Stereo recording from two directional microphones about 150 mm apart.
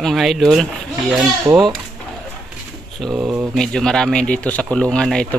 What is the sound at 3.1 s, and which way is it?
Speech, 15° right (ahead or behind).